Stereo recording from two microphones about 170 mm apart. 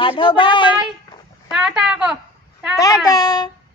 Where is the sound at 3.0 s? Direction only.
20° left (ahead or behind).